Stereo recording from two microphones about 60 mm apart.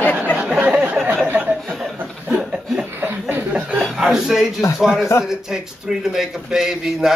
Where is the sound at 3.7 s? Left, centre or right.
Centre.